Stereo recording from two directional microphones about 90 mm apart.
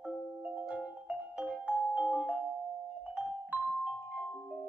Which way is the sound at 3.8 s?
15° right (ahead or behind).